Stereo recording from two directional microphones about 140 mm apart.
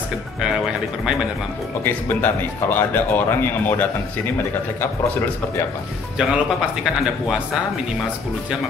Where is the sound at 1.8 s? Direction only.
15° left (ahead or behind).